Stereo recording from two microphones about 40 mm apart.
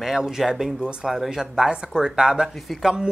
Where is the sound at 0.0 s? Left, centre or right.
Centre.